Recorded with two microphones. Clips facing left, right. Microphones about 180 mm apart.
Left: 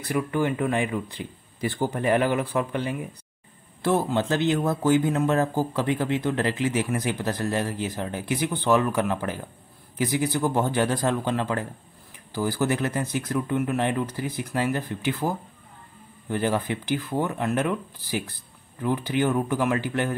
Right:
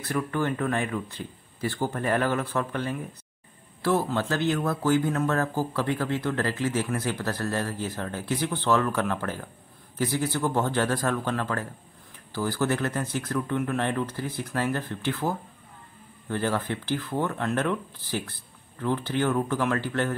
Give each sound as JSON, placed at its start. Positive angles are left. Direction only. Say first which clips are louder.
{"t": 0.0, "sound": "speech", "louder": "left 3 dB", "side_deg": 15}